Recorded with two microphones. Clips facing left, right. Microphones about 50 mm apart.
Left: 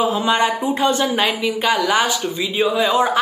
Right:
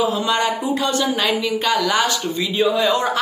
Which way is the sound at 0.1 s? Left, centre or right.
Left.